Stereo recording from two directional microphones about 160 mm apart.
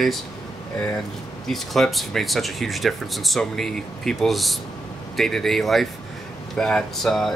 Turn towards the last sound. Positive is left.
turn(degrees=0)  # may be behind; listen again after turning